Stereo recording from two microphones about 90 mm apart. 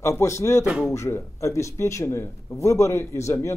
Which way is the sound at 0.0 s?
30° left (ahead or behind).